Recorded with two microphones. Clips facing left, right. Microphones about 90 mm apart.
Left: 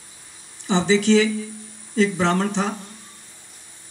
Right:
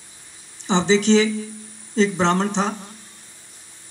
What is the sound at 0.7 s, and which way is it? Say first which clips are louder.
Speech: right 1 dB; 20° right (ahead or behind).